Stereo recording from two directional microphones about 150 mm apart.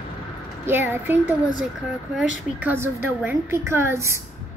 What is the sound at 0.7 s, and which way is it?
Speech, 15° right (ahead or behind).